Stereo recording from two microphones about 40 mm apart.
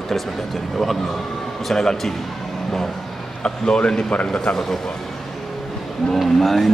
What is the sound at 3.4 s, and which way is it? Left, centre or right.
Speech, left.